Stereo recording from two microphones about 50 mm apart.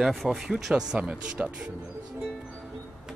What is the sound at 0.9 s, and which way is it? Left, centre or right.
Speech, right.